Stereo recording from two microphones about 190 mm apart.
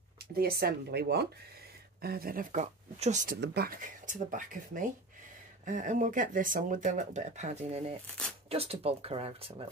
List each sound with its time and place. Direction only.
0.2 s speech: 55° right (ahead or behind)
3.3 s speech: 55° right (ahead or behind); by 9.5 s 30° right (ahead or behind)